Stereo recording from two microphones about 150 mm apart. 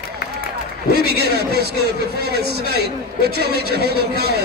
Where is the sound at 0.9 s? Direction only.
90° right.